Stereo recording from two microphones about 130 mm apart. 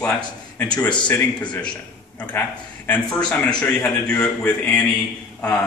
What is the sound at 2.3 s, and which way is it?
A man's voice, 15° left (ahead or behind).